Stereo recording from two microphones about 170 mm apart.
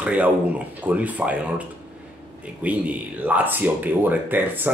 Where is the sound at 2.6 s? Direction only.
10° right (ahead or behind).